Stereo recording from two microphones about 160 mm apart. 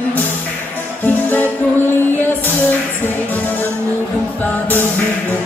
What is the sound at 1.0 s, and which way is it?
Music, 10° left (ahead or behind).